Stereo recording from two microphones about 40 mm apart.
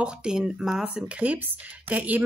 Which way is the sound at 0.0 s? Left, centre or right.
Centre.